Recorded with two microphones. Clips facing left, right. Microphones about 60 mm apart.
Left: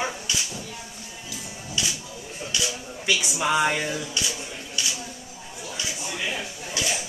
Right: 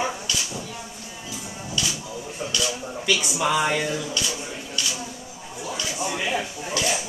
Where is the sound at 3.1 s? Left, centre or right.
Centre.